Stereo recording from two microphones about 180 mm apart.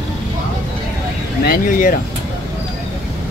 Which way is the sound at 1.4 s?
55° left (ahead or behind).